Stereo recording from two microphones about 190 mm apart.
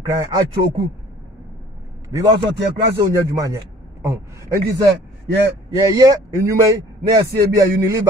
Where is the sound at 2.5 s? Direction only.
65° right (ahead or behind).